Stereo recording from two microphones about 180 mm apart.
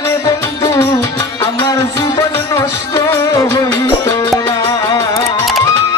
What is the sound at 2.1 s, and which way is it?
Music, 15° left (ahead or behind).